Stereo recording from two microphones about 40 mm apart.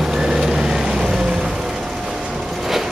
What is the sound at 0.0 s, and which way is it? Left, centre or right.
Vehicle, centre.